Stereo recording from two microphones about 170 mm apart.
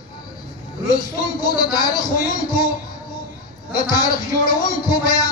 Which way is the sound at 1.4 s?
25° left (ahead or behind).